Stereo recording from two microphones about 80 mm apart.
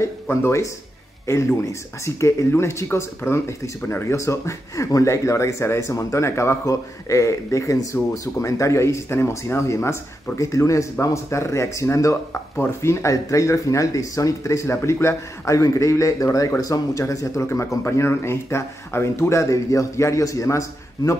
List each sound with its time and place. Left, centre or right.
0.0 s speech: left